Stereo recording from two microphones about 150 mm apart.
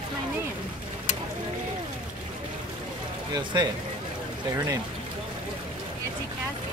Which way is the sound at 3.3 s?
30° right (ahead or behind).